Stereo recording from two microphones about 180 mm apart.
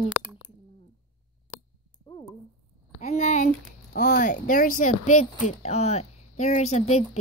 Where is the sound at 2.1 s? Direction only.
30° left (ahead or behind).